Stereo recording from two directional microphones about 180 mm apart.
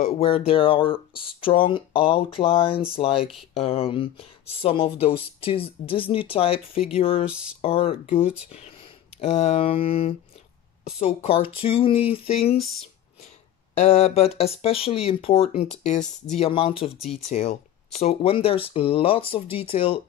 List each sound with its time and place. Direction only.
0.0 s speech: 35° left (ahead or behind)
7.2 s speech: 5° right (ahead or behind)
7.6 s a woman's voice: 30° left (ahead or behind)
13.7 s speech: 35° left (ahead or behind)